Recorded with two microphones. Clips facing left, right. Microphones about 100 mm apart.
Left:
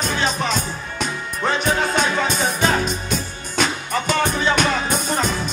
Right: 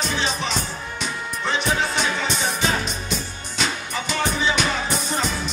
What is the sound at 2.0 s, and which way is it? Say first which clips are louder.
Music: left 4 dB; 45° left (ahead or behind).